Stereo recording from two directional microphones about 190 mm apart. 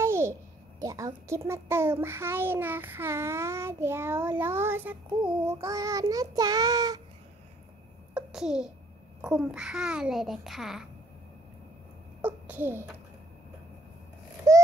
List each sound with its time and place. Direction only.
0.0 s a child's voice: 15° right (ahead or behind)
5.4 s child singing: 15° right (ahead or behind)
8.1 s babbling: 5° right (ahead or behind)
9.2 s a child's voice: 5° right (ahead or behind)
12.2 s a sound: 10° right (ahead or behind)
14.5 s a sound: 15° right (ahead or behind)